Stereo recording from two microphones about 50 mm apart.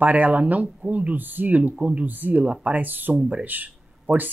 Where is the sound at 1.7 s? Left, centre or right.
Right.